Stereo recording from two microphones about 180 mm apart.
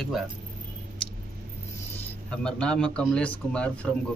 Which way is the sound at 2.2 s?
5° left (ahead or behind).